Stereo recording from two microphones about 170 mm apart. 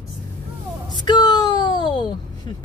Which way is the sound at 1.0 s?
25° left (ahead or behind).